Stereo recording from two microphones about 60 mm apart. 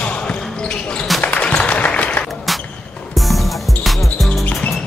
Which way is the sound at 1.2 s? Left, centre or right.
Left.